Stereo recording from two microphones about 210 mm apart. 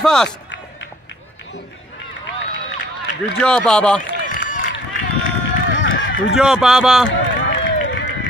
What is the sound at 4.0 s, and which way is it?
Run, 40° left (ahead or behind).